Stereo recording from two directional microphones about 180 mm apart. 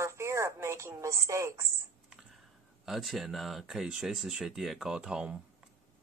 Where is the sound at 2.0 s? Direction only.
Centre (ahead or behind).